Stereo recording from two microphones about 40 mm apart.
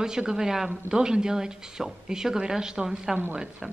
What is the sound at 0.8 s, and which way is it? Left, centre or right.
A woman's voice, centre.